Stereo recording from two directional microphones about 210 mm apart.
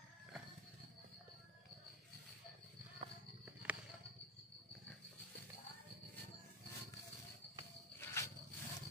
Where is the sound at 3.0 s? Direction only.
30° right (ahead or behind).